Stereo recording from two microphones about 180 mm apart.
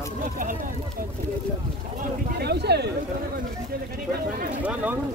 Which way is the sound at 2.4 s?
65° right (ahead or behind).